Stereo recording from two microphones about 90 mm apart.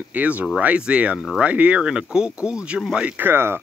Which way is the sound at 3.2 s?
25° right (ahead or behind).